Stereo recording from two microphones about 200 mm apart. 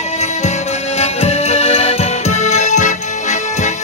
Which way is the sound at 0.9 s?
30° left (ahead or behind).